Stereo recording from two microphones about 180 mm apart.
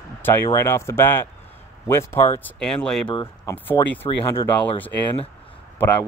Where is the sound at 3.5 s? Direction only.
10° left (ahead or behind).